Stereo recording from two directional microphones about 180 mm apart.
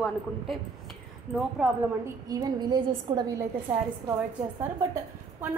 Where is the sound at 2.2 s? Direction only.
20° right (ahead or behind).